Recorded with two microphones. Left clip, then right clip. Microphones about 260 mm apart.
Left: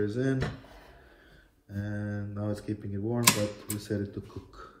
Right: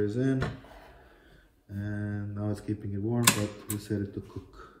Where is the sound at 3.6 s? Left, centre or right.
Centre.